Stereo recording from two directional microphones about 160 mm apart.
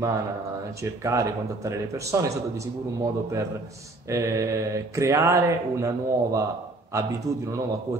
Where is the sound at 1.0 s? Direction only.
20° right (ahead or behind).